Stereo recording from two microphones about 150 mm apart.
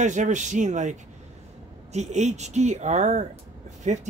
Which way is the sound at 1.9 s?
50° right (ahead or behind).